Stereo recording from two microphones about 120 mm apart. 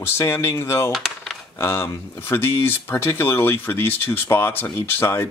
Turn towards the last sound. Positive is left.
turn(degrees=25)  # may be behind; listen again after turning